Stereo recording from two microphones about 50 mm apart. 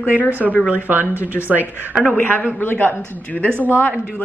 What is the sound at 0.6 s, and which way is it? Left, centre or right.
Speech, right.